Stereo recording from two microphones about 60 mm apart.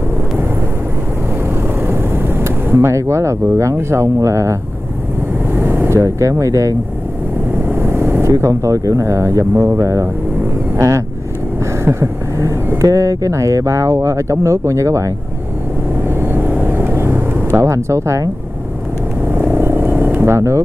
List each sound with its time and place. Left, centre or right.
1.8 s a sound: right
3.7 s speech: right
5.5 s vehicle: right
5.9 s speech: right
7.6 s vehicle: right
8.3 s speech: right
11.8 s vehicle: right
12.8 s speech: right
16.2 s vehicle: right
17.6 s speech: right
19.2 s vehicle: right